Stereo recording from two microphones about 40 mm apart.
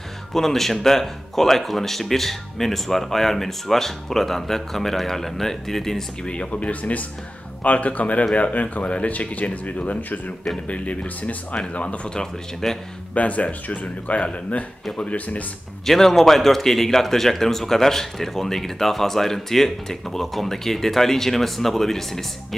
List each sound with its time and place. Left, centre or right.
0.3 s a man's voice: centre
6.2 s speech: left
10.7 s speech: left
12.6 s a man's voice: centre
13.1 s speech: left
15.8 s a man's voice: centre